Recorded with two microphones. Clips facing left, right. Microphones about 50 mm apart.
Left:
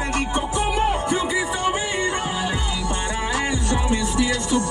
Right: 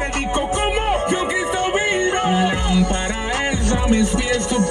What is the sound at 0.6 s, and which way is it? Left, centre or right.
Music, right.